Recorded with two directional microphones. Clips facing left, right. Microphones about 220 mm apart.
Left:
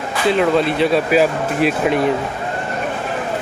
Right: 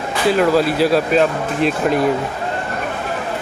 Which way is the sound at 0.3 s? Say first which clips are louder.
Right 1 dB; 5° right (ahead or behind).